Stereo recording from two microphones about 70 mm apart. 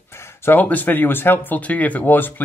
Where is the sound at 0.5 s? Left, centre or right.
Left.